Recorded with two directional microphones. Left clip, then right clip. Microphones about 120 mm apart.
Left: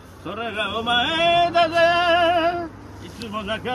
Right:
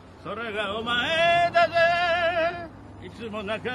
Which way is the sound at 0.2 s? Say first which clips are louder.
Left 4 dB; 25° right (ahead or behind).